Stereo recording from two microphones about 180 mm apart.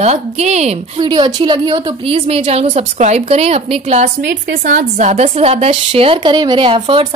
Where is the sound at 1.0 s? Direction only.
25° right (ahead or behind).